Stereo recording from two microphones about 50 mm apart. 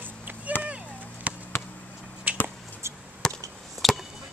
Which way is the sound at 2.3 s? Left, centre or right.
Right.